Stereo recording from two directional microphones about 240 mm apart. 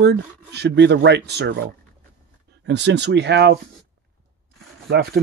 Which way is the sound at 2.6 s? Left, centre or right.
Right.